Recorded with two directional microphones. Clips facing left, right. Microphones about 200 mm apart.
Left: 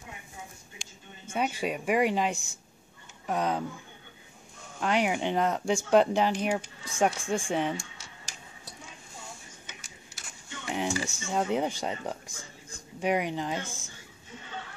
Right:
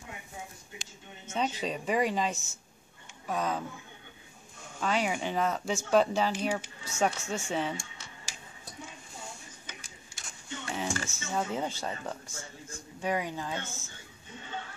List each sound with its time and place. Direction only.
0.8 s a sound: centre (ahead or behind)
1.2 s speech: 10° left (ahead or behind)
4.8 s speech: 15° left (ahead or behind)
10.7 s speech: 15° left (ahead or behind)